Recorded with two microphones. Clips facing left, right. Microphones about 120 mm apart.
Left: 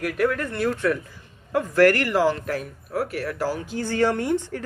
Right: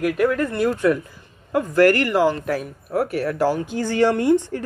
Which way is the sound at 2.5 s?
10° right (ahead or behind).